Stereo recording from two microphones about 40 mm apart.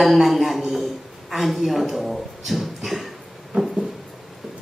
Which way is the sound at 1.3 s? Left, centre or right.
Centre.